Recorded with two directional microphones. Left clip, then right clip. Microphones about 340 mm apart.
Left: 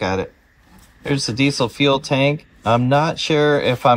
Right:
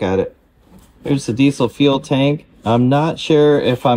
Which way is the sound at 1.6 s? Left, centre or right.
Left.